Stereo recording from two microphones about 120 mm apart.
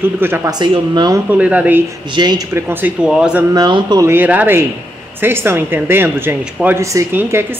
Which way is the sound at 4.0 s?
15° right (ahead or behind).